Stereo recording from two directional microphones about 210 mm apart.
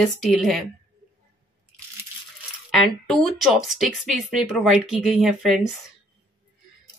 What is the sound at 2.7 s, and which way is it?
Speech, centre (ahead or behind).